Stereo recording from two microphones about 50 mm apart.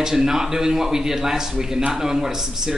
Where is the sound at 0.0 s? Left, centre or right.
Centre.